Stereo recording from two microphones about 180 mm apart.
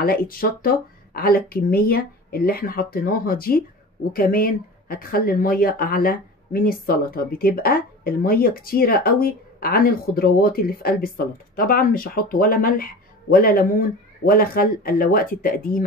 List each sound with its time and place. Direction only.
0.0 s speech: 55° left (ahead or behind)